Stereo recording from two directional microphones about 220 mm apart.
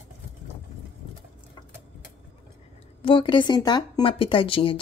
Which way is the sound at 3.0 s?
20° left (ahead or behind).